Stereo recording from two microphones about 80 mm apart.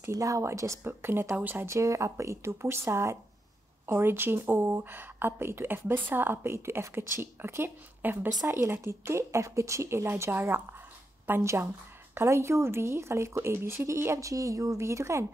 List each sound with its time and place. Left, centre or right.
0.1 s a woman's voice: right
1.7 s a woman's voice: right
8.5 s a woman's voice: right